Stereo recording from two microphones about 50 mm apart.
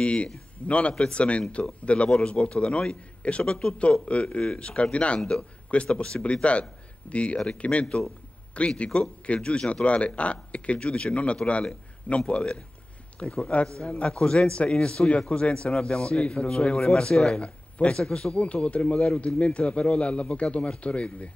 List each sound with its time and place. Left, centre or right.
0.0 s a man's voice: left